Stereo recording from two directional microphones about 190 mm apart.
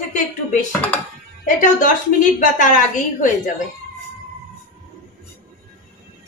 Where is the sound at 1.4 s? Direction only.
45° left (ahead or behind).